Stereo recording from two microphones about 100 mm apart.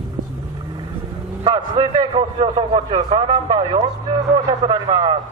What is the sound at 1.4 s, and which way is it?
A man's voice, 55° right (ahead or behind).